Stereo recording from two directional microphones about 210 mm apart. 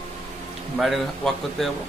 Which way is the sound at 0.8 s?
Centre (ahead or behind).